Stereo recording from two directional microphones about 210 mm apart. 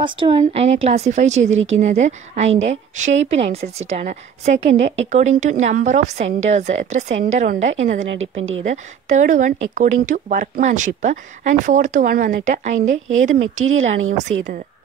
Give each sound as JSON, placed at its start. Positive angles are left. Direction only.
{"t": 0.0, "sound": "a woman's voice", "side_deg": -25}
{"t": 8.0, "sound": "a woman's voice", "side_deg": -65}
{"t": 8.5, "sound": "a woman's voice", "side_deg": -35}
{"t": 13.7, "sound": "speech", "side_deg": -70}